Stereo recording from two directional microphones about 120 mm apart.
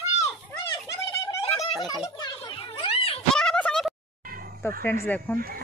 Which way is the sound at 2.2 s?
40° left (ahead or behind).